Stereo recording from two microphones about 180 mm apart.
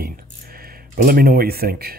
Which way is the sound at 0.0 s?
55° right (ahead or behind).